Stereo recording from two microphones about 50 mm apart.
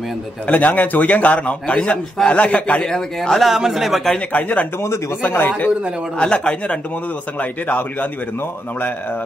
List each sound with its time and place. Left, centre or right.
0.5 s a man's voice: left
2.8 s a man's voice: centre
4.3 s a man's voice: left
5.2 s speech: left
6.1 s a man's voice: centre
7.3 s speech: left